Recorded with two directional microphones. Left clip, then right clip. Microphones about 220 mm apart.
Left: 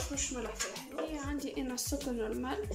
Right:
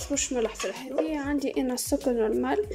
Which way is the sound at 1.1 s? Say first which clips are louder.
Right 10 dB; 40° right (ahead or behind).